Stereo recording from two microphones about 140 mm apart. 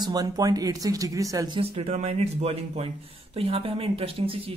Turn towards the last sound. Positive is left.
turn(degrees=-40)  # may be behind; listen again after turning